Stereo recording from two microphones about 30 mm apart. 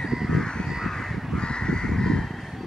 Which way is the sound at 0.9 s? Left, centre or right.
Centre.